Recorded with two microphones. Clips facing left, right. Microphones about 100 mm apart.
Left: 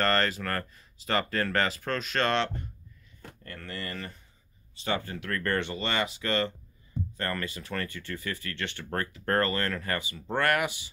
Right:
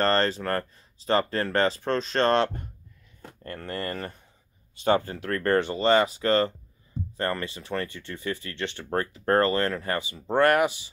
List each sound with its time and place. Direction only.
0.0 s speech: 30° right (ahead or behind)